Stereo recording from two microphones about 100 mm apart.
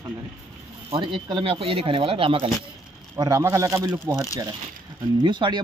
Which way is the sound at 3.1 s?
35° right (ahead or behind).